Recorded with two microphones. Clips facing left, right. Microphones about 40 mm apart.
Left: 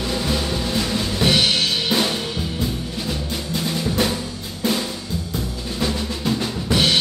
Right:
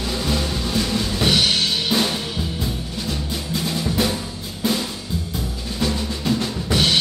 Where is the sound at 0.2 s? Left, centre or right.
Centre.